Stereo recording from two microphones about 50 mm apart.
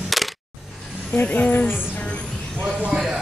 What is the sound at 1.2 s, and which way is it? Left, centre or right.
Speech, left.